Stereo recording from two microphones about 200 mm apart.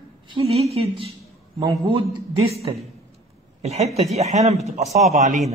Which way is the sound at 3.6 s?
35° right (ahead or behind).